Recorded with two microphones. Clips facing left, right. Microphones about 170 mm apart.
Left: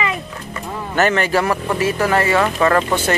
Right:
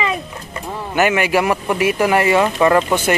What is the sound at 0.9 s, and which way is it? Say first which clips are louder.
Speech: right 1 dB; 10° right (ahead or behind).